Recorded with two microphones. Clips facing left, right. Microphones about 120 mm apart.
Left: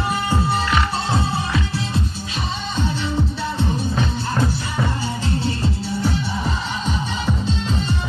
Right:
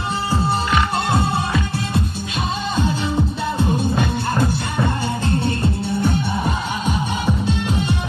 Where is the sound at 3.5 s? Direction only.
50° right (ahead or behind).